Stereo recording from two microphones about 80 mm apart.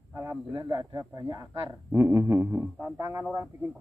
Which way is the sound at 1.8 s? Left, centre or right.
Right.